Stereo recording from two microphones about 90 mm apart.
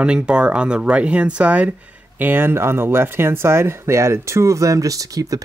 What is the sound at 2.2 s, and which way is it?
Speech, 25° right (ahead or behind).